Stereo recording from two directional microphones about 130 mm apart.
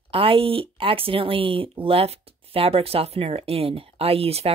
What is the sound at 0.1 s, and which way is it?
Speech, 45° right (ahead or behind).